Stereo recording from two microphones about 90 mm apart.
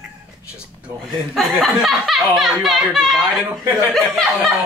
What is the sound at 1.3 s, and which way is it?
Speech, 5° right (ahead or behind).